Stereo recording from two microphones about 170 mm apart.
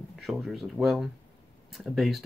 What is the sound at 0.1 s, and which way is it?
Speech, centre (ahead or behind).